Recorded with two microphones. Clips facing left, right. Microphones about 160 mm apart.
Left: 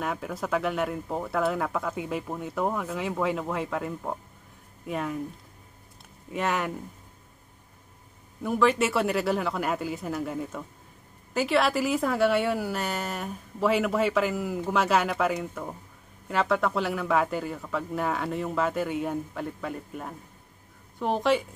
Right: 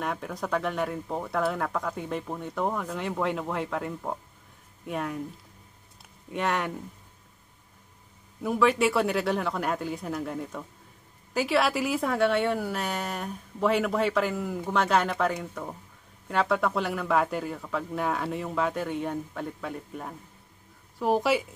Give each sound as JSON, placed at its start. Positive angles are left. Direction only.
{"t": 0.0, "sound": "speech", "side_deg": 0}
{"t": 6.3, "sound": "speech", "side_deg": 0}
{"t": 8.4, "sound": "speech", "side_deg": 0}